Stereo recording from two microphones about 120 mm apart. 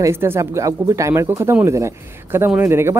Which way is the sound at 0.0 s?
20° right (ahead or behind).